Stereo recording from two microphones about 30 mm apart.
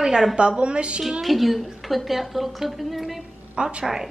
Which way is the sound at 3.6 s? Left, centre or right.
Right.